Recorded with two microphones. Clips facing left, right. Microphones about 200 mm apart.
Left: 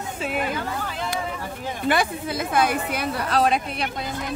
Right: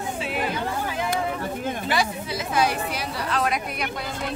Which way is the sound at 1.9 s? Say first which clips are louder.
Left 5 dB; 55° left (ahead or behind).